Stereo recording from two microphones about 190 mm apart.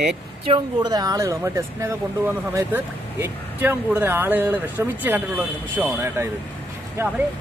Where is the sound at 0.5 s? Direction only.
20° right (ahead or behind).